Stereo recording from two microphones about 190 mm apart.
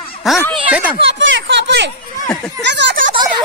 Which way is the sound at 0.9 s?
70° right (ahead or behind).